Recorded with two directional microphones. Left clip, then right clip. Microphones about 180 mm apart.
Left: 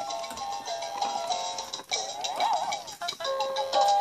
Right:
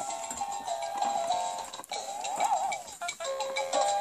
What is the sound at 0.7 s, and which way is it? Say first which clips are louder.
Music: right 1 dB; 20° left (ahead or behind).